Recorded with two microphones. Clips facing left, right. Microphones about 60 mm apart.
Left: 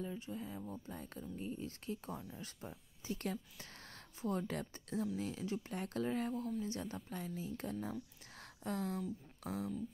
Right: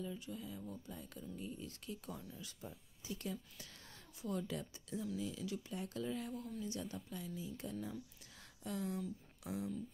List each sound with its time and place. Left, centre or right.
0.0 s speech: left
3.1 s speech: left
8.4 s a sound: left
9.4 s speech: left